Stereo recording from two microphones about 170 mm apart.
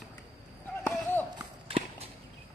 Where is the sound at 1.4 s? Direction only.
35° right (ahead or behind).